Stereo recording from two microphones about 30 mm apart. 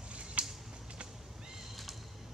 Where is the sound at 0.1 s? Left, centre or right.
Right.